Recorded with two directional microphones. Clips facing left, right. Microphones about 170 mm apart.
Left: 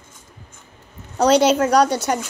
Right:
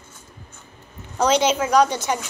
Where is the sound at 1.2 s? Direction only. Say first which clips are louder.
Left 4 dB; 35° left (ahead or behind).